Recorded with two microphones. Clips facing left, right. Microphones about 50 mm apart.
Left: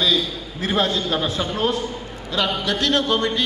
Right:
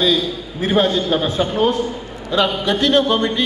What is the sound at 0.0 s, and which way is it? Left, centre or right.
Speech, right.